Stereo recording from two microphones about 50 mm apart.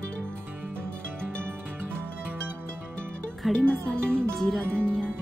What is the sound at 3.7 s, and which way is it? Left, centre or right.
Speech, centre.